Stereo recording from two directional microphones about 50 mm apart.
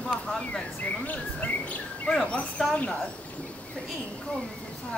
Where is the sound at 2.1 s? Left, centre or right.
Centre.